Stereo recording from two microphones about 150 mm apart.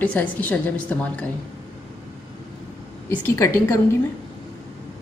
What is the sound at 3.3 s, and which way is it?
Speech, 15° left (ahead or behind).